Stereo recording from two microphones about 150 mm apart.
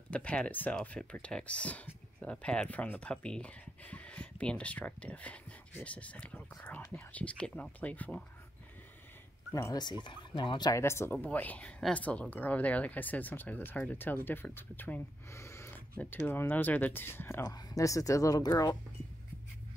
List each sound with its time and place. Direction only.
0.1 s a woman's voice: 10° left (ahead or behind)
9.5 s speech: 20° left (ahead or behind)
10.7 s a woman's voice: 15° left (ahead or behind)